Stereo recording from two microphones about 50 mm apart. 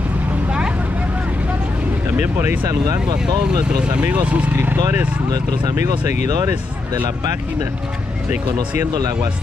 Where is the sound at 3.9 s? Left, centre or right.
Right.